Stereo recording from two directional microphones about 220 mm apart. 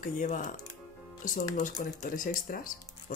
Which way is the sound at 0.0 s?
35° left (ahead or behind).